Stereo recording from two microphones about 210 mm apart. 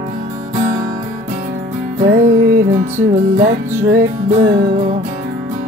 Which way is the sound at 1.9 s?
40° right (ahead or behind).